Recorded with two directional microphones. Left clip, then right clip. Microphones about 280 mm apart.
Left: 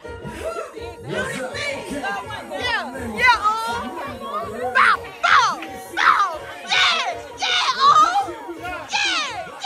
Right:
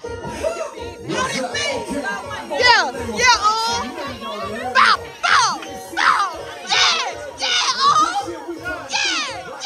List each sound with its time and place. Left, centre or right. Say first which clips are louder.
1.1 s music: right 4 dB; centre
2.6 s children playing: right 11 dB; right
3.2 s children playing: right 1 dB; centre
4.7 s music: right 2 dB; centre
8.9 s a sound: even; centre